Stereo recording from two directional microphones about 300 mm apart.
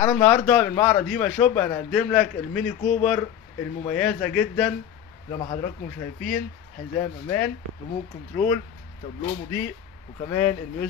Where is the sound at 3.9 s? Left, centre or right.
Centre.